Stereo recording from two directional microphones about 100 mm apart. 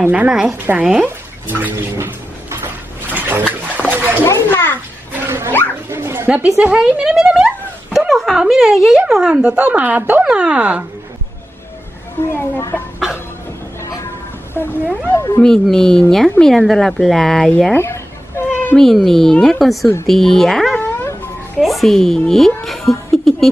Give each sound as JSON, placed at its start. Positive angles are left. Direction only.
{"t": 0.0, "sound": "speech", "side_deg": -15}
{"t": 1.0, "sound": "a sound", "side_deg": -20}
{"t": 3.7, "sound": "dog", "side_deg": -20}
{"t": 4.2, "sound": "a child's voice", "side_deg": 25}
{"t": 5.1, "sound": "dog", "side_deg": -25}
{"t": 6.6, "sound": "speech", "side_deg": -10}
{"t": 12.4, "sound": "a child's voice", "side_deg": 25}
{"t": 14.5, "sound": "speech", "side_deg": 20}
{"t": 15.4, "sound": "speech", "side_deg": 5}
{"t": 17.7, "sound": "cat", "side_deg": 25}
{"t": 18.8, "sound": "speech", "side_deg": 5}
{"t": 20.8, "sound": "wail", "side_deg": 20}
{"t": 21.5, "sound": "a woman's voice", "side_deg": 0}
{"t": 22.7, "sound": "chuckle", "side_deg": 0}